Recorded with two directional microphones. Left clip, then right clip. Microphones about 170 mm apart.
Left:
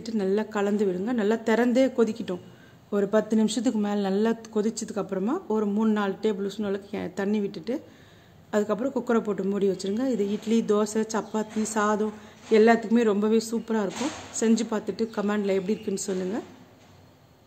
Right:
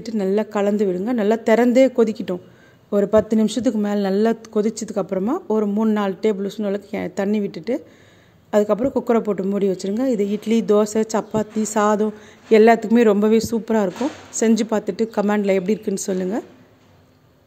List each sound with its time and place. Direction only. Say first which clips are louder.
0.0 s a woman's voice: right 6 dB; 30° right (ahead or behind)